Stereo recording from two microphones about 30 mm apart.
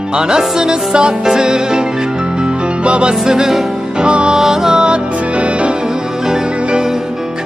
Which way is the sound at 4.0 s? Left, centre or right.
Right.